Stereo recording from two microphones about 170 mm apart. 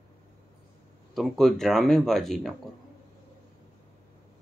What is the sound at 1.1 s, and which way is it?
Speech, centre (ahead or behind).